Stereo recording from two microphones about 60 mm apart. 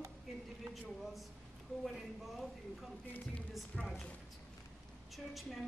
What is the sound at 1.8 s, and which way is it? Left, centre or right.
A woman's voice, centre.